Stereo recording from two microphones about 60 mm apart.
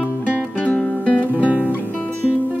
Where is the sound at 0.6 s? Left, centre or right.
Left.